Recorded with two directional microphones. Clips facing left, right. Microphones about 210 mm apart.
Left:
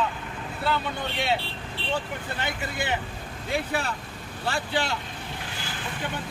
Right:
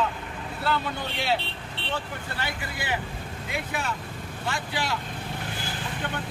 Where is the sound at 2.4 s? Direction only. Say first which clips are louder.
Left 3 dB; 25° left (ahead or behind).